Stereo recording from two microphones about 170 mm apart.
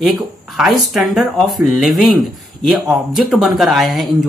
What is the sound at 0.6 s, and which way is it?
Speech, centre (ahead or behind).